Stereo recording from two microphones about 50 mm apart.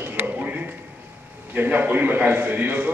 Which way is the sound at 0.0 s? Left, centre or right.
Right.